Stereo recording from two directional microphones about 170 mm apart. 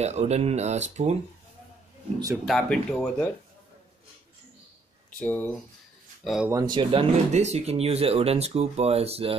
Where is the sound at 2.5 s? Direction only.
5° left (ahead or behind).